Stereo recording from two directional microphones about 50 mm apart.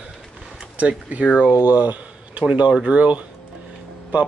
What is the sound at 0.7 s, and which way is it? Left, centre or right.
Speech, right.